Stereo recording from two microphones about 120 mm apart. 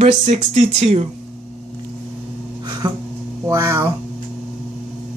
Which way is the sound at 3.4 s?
25° right (ahead or behind).